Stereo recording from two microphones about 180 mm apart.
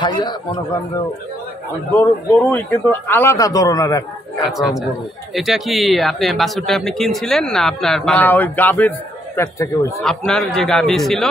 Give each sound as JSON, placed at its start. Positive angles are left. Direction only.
{"t": 0.0, "sound": "a man's voice", "side_deg": 25}
{"t": 2.0, "sound": "a man's voice", "side_deg": 10}
{"t": 4.5, "sound": "speech", "side_deg": 0}